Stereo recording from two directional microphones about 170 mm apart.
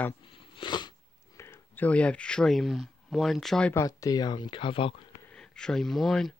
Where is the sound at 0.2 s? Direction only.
30° left (ahead or behind).